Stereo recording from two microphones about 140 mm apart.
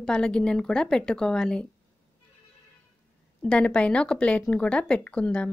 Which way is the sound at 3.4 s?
5° left (ahead or behind).